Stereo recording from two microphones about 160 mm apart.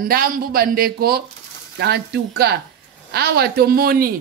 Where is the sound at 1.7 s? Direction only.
90° right; by 4.0 s 65° right (ahead or behind).